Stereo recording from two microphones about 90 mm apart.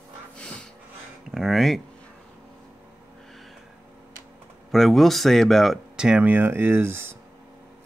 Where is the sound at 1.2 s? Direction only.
5° right (ahead or behind).